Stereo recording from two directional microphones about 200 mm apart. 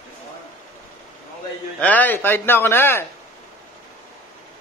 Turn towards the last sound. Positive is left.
turn(degrees=10)  # may be behind; listen again after turning